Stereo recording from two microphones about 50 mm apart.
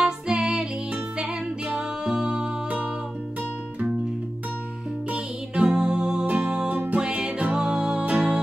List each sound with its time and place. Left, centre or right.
0.0 s music: centre
5.1 s music: centre
6.2 s music: right
7.5 s music: centre
8.0 s music: right